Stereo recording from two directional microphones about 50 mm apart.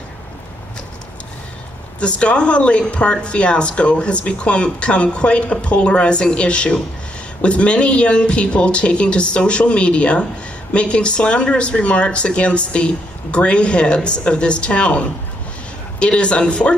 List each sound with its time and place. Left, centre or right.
2.0 s speech: left